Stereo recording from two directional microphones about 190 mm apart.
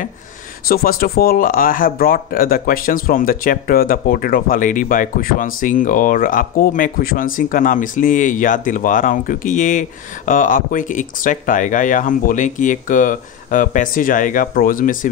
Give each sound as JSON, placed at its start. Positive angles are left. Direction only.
{"t": 0.7, "sound": "speech", "side_deg": 50}